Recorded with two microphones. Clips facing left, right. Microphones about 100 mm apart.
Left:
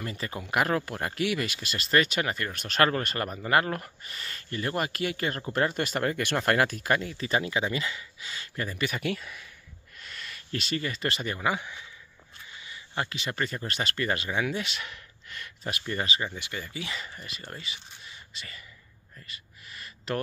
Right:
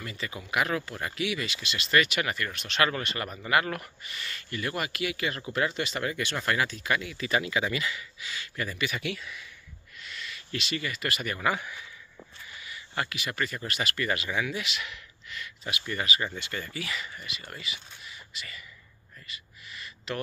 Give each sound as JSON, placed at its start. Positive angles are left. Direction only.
{"t": 0.0, "sound": "speech", "side_deg": 45}
{"t": 9.9, "sound": "a sound", "side_deg": 45}
{"t": 11.3, "sound": "speech", "side_deg": 20}
{"t": 16.2, "sound": "speech", "side_deg": 15}
{"t": 16.9, "sound": "speech", "side_deg": 35}
{"t": 19.2, "sound": "a sound", "side_deg": 40}